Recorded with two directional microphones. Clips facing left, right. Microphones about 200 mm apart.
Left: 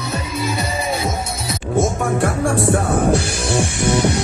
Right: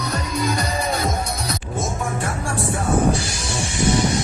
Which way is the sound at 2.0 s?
55° left (ahead or behind).